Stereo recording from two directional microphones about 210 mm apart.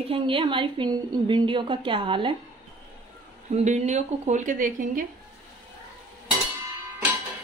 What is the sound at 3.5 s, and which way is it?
Speech, 35° right (ahead or behind).